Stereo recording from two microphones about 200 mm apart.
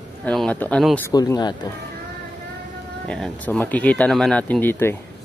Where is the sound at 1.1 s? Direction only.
20° left (ahead or behind).